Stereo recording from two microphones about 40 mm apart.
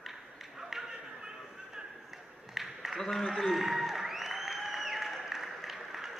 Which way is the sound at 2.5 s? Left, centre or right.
Centre.